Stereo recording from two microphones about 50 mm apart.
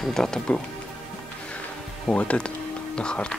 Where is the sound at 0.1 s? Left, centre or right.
Centre.